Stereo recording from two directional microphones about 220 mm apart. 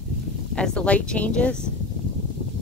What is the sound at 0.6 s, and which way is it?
Speech, 5° left (ahead or behind).